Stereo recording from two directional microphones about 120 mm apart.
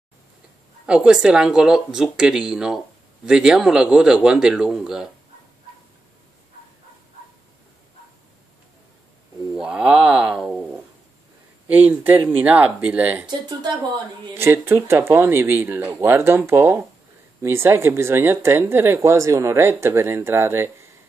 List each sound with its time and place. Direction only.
0.8 s speech: 10° right (ahead or behind)
9.6 s a sound: 5° right (ahead or behind)
11.6 s speech: 15° right (ahead or behind)
13.3 s speech: 35° right (ahead or behind)
14.3 s speech: 20° right (ahead or behind)